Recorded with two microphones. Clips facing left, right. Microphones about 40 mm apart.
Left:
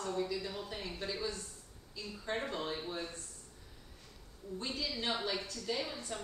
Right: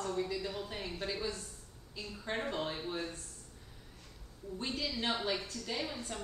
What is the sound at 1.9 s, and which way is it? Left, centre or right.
A woman's voice, centre.